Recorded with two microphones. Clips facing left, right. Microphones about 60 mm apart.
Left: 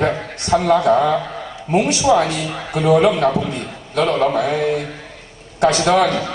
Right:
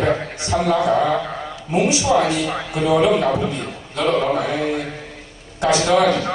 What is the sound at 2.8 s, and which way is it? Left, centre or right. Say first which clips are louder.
A man's voice: left 2 dB; left.